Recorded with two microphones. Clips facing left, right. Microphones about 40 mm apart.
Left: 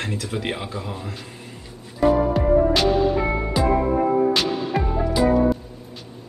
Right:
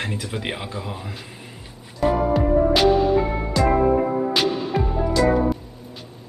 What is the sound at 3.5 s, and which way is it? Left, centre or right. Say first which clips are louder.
Music: right 2 dB; centre.